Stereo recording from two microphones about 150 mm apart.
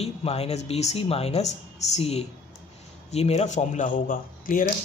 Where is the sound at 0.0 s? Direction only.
40° left (ahead or behind).